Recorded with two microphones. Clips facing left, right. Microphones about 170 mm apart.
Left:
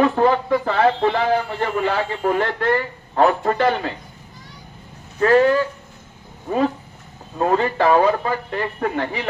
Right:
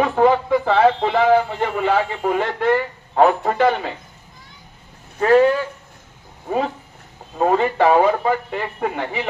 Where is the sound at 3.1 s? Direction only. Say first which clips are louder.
Right 1 dB; 15° right (ahead or behind).